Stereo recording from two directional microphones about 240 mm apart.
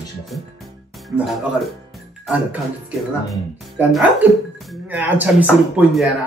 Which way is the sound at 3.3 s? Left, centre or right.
Centre.